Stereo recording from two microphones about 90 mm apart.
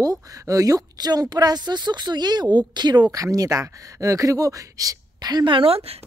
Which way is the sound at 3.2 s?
40° right (ahead or behind).